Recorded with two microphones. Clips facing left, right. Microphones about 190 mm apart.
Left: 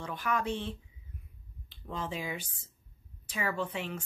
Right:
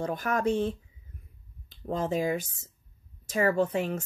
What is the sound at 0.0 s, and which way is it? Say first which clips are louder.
Speech: right 6 dB; 45° right (ahead or behind).